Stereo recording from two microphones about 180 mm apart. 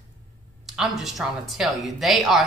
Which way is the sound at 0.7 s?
Centre (ahead or behind).